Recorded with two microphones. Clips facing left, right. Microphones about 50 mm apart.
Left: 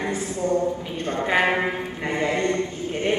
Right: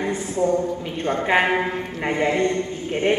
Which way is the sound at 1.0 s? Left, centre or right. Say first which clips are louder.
Right 2 dB; right.